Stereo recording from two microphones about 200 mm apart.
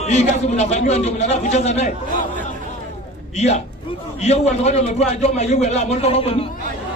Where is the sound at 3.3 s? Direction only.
35° left (ahead or behind).